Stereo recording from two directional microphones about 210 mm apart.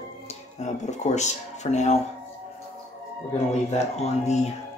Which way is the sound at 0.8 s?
35° left (ahead or behind).